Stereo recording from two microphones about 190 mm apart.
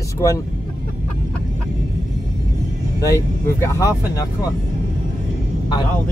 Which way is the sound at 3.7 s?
15° left (ahead or behind).